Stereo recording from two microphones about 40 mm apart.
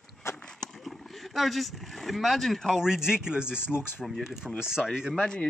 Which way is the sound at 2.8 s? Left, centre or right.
Centre.